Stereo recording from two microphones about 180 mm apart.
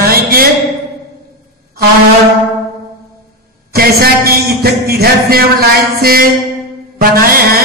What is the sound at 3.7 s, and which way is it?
Speech, 55° right (ahead or behind).